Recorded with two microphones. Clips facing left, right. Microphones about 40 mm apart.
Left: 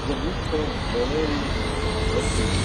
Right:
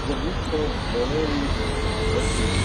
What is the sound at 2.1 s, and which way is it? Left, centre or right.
Vehicle, right.